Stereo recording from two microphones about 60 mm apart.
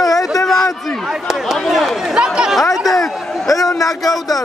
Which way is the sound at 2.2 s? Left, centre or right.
Centre.